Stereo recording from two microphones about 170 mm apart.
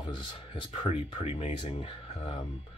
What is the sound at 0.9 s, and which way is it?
Speech, 40° left (ahead or behind).